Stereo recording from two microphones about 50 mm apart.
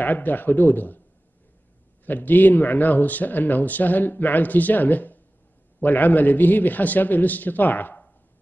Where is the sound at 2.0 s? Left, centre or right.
Left.